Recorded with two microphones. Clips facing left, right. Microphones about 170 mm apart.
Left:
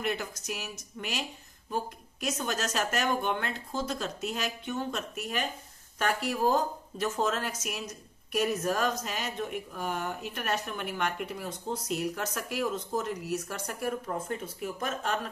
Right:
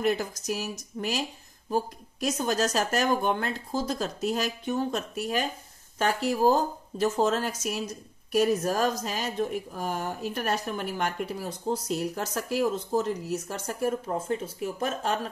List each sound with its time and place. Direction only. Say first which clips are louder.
0.0 s a woman's voice: right 6 dB; 35° right (ahead or behind)